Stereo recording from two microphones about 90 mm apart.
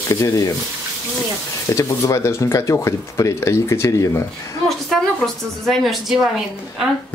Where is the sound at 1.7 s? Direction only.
35° left (ahead or behind).